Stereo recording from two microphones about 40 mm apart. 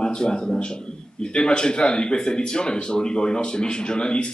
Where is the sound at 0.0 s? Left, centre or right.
Centre.